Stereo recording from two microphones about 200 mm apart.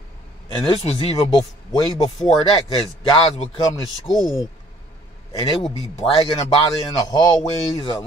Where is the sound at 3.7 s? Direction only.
20° left (ahead or behind).